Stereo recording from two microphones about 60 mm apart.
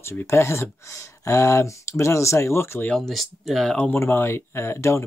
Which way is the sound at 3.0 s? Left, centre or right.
Centre.